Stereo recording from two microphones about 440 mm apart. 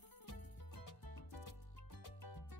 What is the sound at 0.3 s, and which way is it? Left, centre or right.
Music, left.